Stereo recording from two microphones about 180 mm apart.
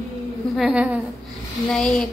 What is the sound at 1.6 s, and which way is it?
Speech, 5° left (ahead or behind).